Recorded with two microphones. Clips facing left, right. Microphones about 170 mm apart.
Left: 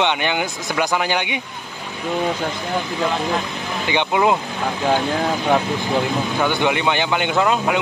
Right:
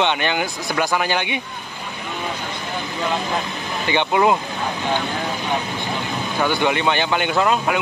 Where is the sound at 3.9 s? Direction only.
15° left (ahead or behind).